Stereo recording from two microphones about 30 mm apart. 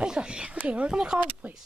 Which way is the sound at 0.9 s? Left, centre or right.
Right.